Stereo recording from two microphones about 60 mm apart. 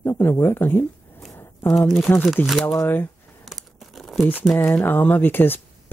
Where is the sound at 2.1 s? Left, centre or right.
Left.